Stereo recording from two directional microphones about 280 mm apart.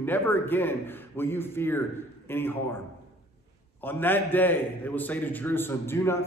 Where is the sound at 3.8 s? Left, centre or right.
Centre.